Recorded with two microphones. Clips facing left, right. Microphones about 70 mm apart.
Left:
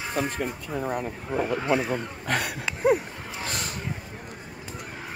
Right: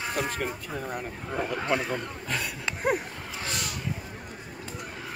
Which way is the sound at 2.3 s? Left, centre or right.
Left.